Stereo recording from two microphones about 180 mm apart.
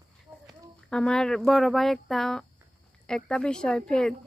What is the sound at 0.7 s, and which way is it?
Speech, 5° left (ahead or behind).